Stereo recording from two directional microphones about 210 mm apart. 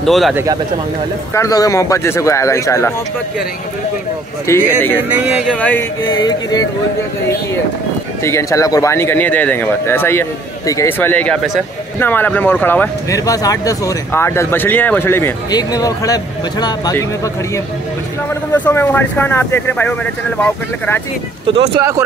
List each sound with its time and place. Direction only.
0.0 s speech: centre (ahead or behind)
1.3 s speech: 15° left (ahead or behind)
4.5 s speech: 10° left (ahead or behind)
5.1 s speech: 5° right (ahead or behind)
6.1 s speech: 20° left (ahead or behind)
8.2 s speech: 15° left (ahead or behind)
18.3 s speech: 10° left (ahead or behind)
21.5 s speech: 25° right (ahead or behind)